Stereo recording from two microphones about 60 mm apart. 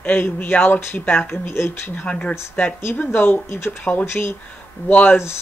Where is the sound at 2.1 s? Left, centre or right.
Centre.